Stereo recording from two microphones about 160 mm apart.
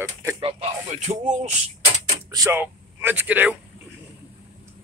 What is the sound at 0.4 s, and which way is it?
Music, 40° right (ahead or behind).